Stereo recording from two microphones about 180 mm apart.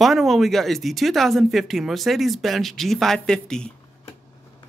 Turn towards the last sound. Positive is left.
turn(degrees=5)  # may be behind; listen again after turning